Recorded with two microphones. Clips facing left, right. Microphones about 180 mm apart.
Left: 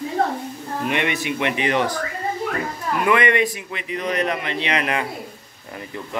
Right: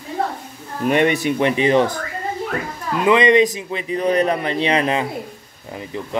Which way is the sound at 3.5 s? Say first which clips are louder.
Right 5 dB; 35° right (ahead or behind).